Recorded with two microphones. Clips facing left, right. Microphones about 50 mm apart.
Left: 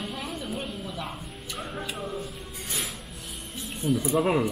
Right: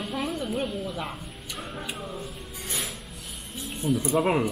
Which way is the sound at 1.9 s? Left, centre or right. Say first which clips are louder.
Left 2 dB; centre.